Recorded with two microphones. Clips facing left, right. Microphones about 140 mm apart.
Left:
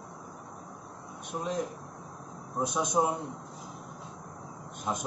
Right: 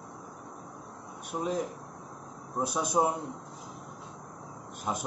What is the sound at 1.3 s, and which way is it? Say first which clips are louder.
Speech: right 2 dB; 10° right (ahead or behind).